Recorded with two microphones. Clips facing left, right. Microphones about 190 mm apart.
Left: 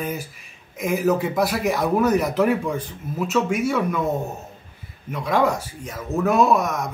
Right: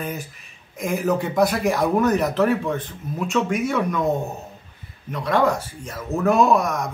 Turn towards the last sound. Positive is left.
turn(degrees=5)  # may be behind; listen again after turning